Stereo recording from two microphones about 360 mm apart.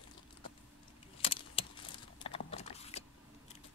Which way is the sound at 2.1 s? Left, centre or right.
Centre.